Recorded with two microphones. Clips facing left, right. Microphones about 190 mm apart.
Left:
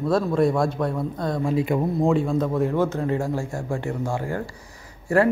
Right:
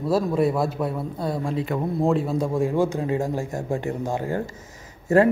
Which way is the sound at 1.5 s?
10° left (ahead or behind).